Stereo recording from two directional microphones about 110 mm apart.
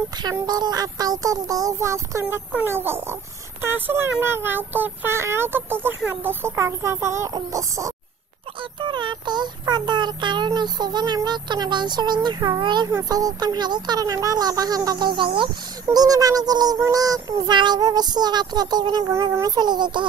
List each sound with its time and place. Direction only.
0.2 s child singing: 40° right (ahead or behind); by 3.2 s 20° right (ahead or behind)
3.6 s speech: 20° right (ahead or behind)
8.7 s child singing: 45° right (ahead or behind)